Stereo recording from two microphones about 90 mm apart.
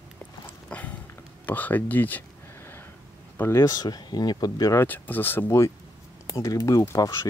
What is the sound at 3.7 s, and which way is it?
Speech, 50° left (ahead or behind).